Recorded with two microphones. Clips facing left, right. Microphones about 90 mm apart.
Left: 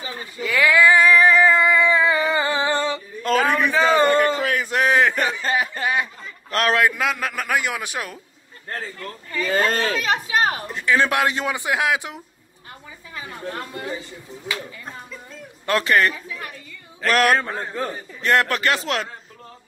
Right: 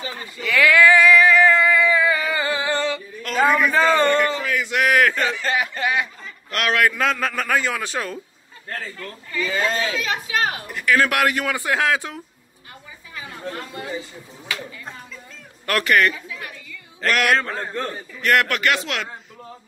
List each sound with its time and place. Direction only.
0.4 s female singing: 20° left (ahead or behind); by 1.3 s 40° left (ahead or behind)
1.5 s a sound: 25° left (ahead or behind)
3.3 s a sound: centre (ahead or behind)
4.5 s a sound: 40° left (ahead or behind)
6.5 s speech: 35° left (ahead or behind)
7.0 s a man's voice: 5° left (ahead or behind)
8.6 s a man's voice: 30° left (ahead or behind)
9.4 s speech: 45° left (ahead or behind)
10.2 s speech: 35° left (ahead or behind); by 12.2 s 15° left (ahead or behind)
13.1 s a sound: 30° left (ahead or behind)
15.6 s a woman's voice: 30° left (ahead or behind)
17.4 s a man's voice: 5° left (ahead or behind)
18.2 s speech: 30° left (ahead or behind)